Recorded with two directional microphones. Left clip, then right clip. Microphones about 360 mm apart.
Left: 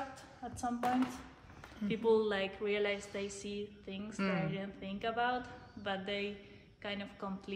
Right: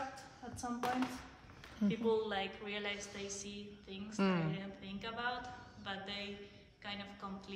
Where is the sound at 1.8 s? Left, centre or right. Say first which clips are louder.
Left 4 dB; left.